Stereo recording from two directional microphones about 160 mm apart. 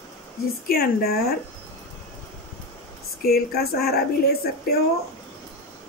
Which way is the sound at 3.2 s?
70° left (ahead or behind).